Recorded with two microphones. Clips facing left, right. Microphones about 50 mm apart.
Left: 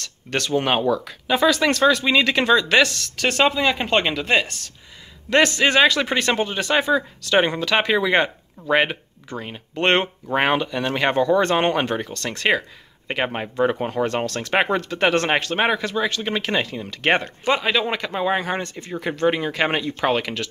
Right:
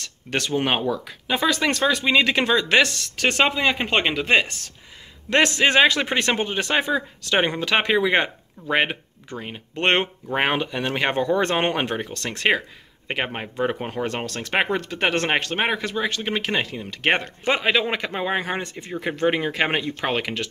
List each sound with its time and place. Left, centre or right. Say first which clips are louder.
0.0 s speech: left 1 dB; centre
13.1 s speech: left 3 dB; centre
17.5 s speech: even; right